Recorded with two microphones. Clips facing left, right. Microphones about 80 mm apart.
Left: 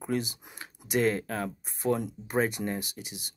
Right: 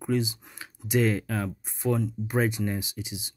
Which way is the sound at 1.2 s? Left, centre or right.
Centre.